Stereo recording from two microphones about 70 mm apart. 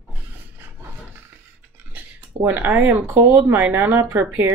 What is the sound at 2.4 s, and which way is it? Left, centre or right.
Speech, right.